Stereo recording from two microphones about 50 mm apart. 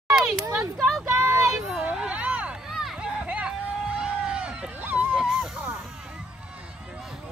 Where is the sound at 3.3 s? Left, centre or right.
Right.